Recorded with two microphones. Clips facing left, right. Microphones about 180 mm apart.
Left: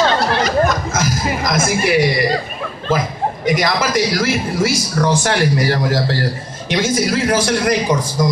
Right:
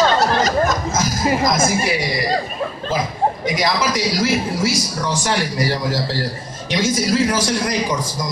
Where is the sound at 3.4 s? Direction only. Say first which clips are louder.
Left 2 dB; 55° left (ahead or behind).